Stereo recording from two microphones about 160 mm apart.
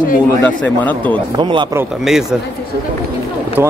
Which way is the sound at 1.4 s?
30° right (ahead or behind).